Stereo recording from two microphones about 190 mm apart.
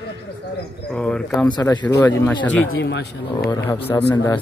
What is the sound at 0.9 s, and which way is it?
Speech, 5° left (ahead or behind).